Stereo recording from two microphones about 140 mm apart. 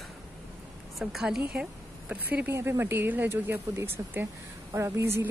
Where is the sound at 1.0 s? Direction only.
Centre (ahead or behind).